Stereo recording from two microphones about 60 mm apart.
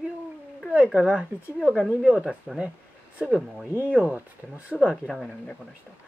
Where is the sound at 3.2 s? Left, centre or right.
Centre.